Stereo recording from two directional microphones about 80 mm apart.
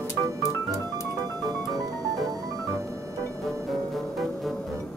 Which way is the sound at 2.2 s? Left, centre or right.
Right.